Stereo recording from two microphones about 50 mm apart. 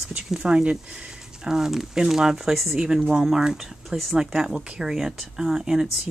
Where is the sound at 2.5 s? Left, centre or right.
Centre.